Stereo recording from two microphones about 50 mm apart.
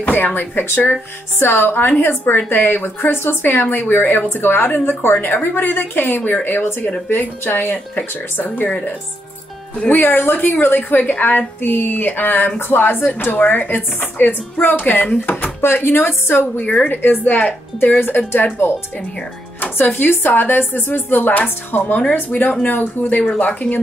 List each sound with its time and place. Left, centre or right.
0.0 s a woman's voice: left
9.9 s a woman's voice: left
15.6 s speech: left
16.5 s a woman's voice: left